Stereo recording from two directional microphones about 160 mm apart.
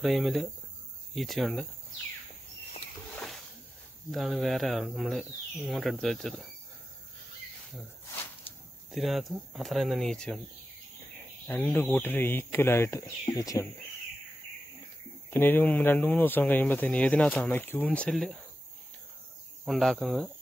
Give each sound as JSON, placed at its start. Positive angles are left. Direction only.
{"t": 0.0, "sound": "speech", "side_deg": 0}
{"t": 3.2, "sound": "a sound", "side_deg": 0}
{"t": 4.1, "sound": "speech", "side_deg": 0}
{"t": 8.9, "sound": "speech", "side_deg": 0}
{"t": 11.4, "sound": "speech", "side_deg": 10}
{"t": 15.2, "sound": "speech", "side_deg": 15}
{"t": 19.6, "sound": "speech", "side_deg": 0}